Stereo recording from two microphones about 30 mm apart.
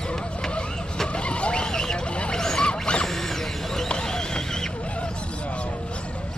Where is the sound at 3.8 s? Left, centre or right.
Left.